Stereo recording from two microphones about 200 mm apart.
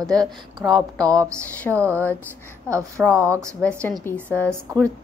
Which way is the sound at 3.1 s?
15° right (ahead or behind).